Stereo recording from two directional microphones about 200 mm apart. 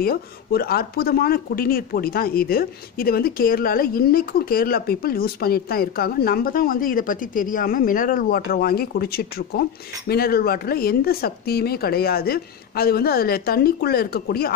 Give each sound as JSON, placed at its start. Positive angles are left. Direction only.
{"t": 0.0, "sound": "speech", "side_deg": 50}